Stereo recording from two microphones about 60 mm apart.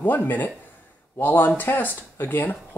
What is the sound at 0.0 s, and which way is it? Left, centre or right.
Speech, left.